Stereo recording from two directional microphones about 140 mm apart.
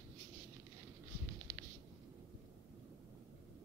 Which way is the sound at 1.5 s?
25° right (ahead or behind).